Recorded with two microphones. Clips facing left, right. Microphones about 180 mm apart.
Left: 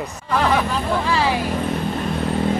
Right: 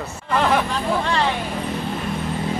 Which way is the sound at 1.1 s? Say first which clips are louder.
Left 4 dB; 5° left (ahead or behind).